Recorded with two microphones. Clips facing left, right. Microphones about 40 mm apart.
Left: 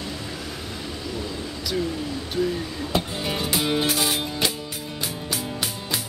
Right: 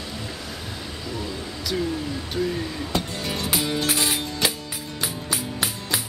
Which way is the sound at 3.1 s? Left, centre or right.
Centre.